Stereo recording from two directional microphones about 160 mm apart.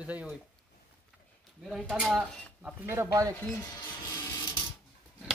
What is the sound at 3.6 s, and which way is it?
Printer, 25° left (ahead or behind).